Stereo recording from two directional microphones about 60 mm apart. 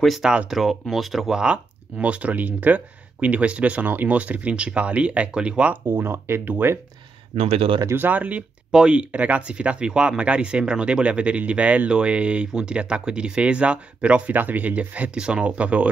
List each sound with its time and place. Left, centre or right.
0.2 s speech: centre
0.5 s speech: centre
1.4 s speech: centre
5.9 s speech: right
7.9 s speech: right
8.7 s speech: centre